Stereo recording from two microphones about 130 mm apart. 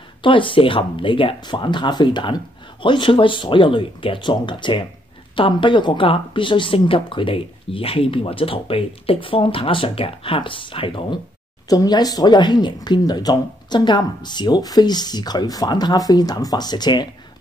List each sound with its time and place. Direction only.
0.2 s speech: 40° left (ahead or behind)
11.7 s speech: 30° left (ahead or behind)